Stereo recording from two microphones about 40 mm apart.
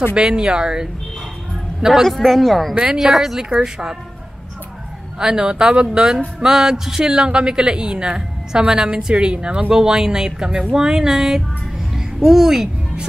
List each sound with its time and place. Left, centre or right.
0.1 s a woman's voice: centre
1.8 s a man's voice: centre
2.0 s speech: centre
5.2 s a woman's voice: centre
11.9 s babbling: centre